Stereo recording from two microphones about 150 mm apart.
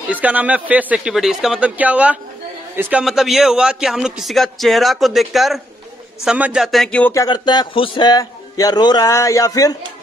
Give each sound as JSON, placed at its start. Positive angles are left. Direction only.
{"t": 0.1, "sound": "a man's voice", "side_deg": -10}
{"t": 7.2, "sound": "a man's voice", "side_deg": 30}